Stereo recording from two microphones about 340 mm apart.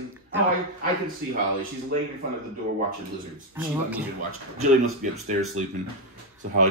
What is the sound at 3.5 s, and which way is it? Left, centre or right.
Speech, centre.